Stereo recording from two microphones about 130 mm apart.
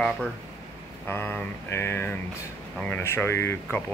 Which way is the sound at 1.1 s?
15° left (ahead or behind).